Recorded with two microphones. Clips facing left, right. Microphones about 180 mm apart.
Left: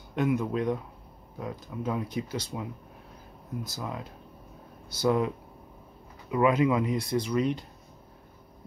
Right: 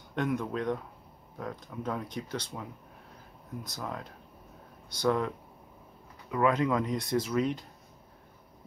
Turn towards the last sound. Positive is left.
turn(degrees=0)  # may be behind; listen again after turning